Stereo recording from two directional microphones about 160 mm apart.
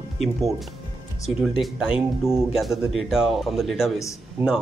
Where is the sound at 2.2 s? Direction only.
Centre (ahead or behind).